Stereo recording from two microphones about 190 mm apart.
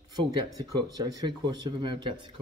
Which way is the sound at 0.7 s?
20° right (ahead or behind).